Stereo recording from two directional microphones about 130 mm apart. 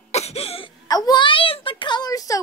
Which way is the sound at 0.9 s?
30° left (ahead or behind).